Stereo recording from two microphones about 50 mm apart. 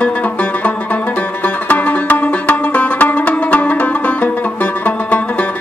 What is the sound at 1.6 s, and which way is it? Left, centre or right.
Music, left.